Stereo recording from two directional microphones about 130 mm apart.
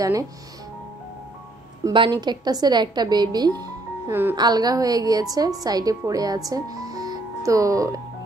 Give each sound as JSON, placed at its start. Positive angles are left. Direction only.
{"t": 1.9, "sound": "speech", "side_deg": -35}
{"t": 4.1, "sound": "speech", "side_deg": -15}
{"t": 4.4, "sound": "a woman's voice", "side_deg": -30}